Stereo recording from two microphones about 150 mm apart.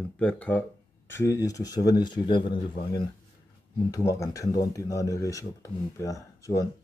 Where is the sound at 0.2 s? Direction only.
10° left (ahead or behind).